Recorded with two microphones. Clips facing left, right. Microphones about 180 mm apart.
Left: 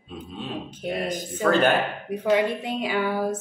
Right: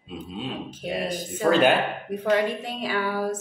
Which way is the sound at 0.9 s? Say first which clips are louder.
Left 1 dB; 10° right (ahead or behind).